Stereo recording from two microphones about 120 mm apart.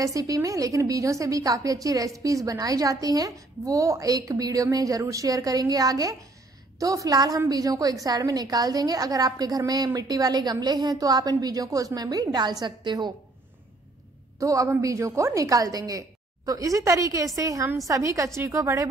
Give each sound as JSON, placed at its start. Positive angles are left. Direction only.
{"t": 0.0, "sound": "a woman's voice", "side_deg": -30}
{"t": 14.4, "sound": "a woman's voice", "side_deg": -25}